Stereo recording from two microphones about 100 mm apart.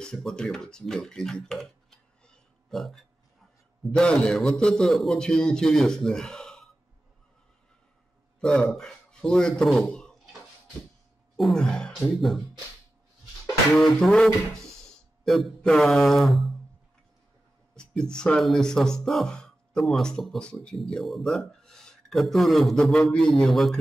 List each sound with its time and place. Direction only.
0.0 s speech: 5° left (ahead or behind)
8.4 s speech: 5° left (ahead or behind)
11.3 s speech: 5° left (ahead or behind)
13.7 s speech: centre (ahead or behind)
17.7 s speech: 10° left (ahead or behind)